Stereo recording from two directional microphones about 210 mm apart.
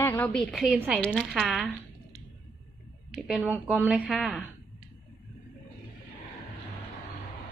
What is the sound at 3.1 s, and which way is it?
Speech, centre (ahead or behind).